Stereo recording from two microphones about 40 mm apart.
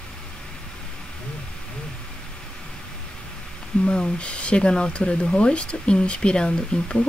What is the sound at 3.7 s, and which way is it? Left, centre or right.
Speech, left.